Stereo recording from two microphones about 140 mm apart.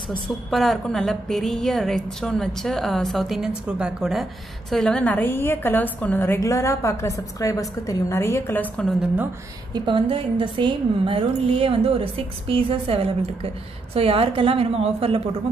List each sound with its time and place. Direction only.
0.5 s a woman's voice: centre (ahead or behind)
9.0 s a woman's voice: 10° right (ahead or behind)
9.8 s a woman's voice: 35° right (ahead or behind)